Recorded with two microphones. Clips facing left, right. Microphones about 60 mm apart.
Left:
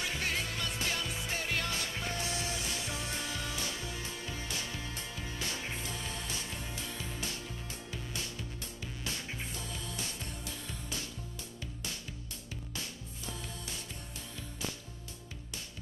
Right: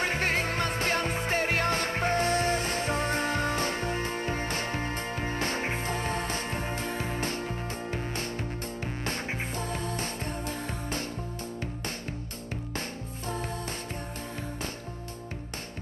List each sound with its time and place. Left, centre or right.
0.0 s music: right